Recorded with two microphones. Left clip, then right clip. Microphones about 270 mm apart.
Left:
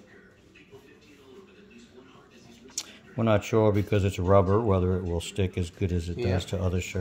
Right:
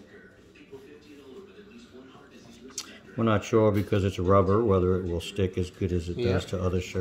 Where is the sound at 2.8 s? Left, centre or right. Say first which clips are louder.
Left 1 dB; left.